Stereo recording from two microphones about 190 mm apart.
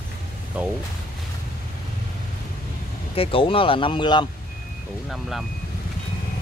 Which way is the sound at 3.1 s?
30° left (ahead or behind).